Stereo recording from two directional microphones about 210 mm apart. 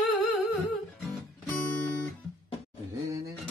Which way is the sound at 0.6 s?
Centre (ahead or behind).